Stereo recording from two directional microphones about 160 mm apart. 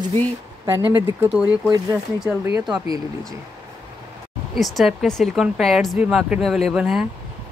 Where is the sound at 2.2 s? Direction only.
15° right (ahead or behind).